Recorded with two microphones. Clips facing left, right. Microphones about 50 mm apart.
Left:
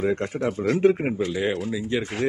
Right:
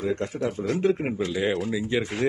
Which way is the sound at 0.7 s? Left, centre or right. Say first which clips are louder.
Left 5 dB; left.